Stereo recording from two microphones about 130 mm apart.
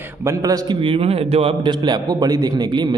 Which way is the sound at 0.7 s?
45° right (ahead or behind).